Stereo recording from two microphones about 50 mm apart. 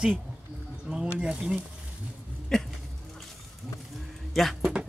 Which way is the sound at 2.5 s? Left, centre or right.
Centre.